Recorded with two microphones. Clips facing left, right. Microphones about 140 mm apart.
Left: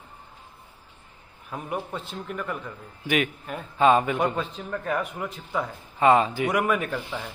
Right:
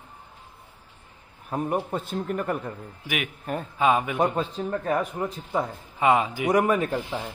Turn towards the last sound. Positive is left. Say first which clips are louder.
# right 3 dB
turn(degrees=-25)  # may be behind; listen again after turning